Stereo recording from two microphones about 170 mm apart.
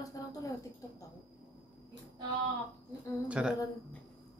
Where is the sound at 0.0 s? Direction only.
20° left (ahead or behind).